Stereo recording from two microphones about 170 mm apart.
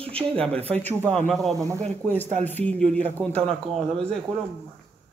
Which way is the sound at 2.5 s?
10° left (ahead or behind).